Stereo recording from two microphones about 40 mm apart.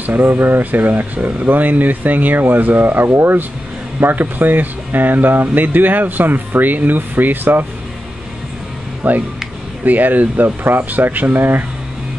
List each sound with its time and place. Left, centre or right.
0.0 s speech: right
9.0 s speech: right